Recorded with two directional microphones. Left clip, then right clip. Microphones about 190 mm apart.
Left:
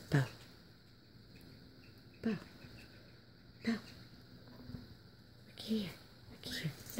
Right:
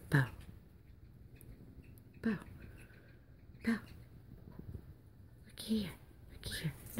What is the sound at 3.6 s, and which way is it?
Dog, 10° right (ahead or behind).